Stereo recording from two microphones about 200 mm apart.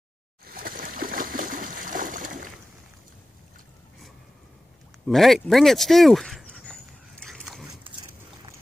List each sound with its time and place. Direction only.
0.5 s a sound: 45° right (ahead or behind)
5.0 s speech: centre (ahead or behind)
7.2 s pig: centre (ahead or behind)